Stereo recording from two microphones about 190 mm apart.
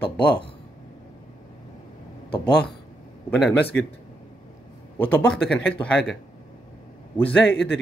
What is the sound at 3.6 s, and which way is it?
Speech, 60° left (ahead or behind).